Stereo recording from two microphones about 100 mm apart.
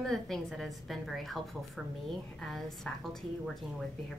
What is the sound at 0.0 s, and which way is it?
A woman's voice, 5° left (ahead or behind).